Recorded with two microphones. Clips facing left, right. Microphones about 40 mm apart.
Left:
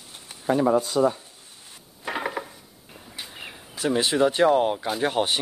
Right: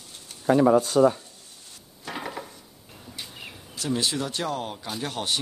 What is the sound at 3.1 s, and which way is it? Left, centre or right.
Speech, centre.